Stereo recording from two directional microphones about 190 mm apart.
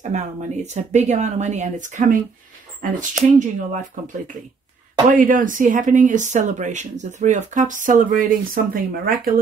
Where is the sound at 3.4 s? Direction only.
40° right (ahead or behind).